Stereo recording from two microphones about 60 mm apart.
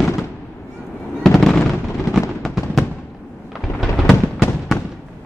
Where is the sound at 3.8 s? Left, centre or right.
Centre.